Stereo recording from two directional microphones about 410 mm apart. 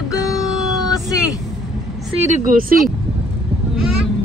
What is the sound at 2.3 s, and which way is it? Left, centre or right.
Speech, centre.